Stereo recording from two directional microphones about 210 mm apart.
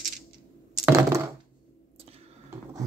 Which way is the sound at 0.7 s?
10° right (ahead or behind).